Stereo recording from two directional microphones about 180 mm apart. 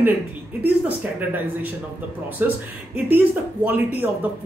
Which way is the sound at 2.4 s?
10° right (ahead or behind).